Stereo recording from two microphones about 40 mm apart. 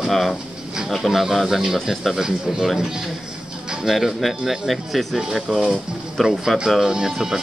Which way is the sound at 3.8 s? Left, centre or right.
Centre.